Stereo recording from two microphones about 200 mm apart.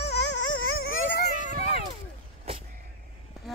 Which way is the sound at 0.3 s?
90° left.